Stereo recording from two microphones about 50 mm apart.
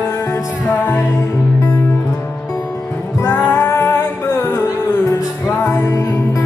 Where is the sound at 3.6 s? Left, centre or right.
Left.